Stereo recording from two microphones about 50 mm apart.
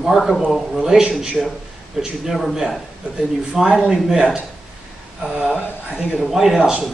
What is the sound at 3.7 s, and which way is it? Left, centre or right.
Speech, centre.